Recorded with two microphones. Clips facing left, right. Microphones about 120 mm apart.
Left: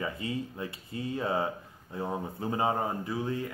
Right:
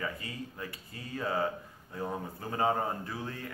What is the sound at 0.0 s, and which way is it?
Speech, 20° left (ahead or behind).